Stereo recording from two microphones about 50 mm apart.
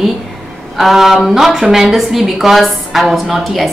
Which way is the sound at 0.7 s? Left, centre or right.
Centre.